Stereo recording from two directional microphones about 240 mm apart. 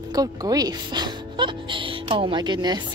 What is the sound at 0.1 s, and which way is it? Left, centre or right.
Speech, centre.